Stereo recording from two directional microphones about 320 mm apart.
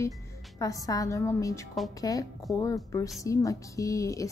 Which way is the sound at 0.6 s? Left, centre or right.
Centre.